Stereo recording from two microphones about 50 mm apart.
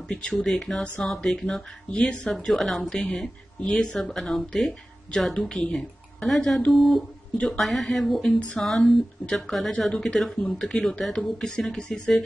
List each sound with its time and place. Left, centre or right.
0.1 s speech: centre
1.9 s speech: left
2.3 s speech: centre
8.4 s speech: left
8.6 s speech: centre